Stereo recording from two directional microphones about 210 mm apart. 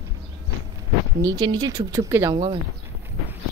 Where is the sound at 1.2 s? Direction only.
20° right (ahead or behind).